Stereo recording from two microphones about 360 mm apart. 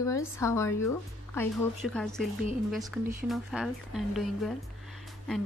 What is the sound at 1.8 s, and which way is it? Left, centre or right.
Speech, left.